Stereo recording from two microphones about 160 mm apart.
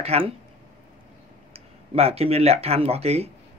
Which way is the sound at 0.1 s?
40° right (ahead or behind).